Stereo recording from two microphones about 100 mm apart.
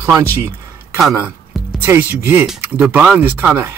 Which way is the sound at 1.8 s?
20° right (ahead or behind).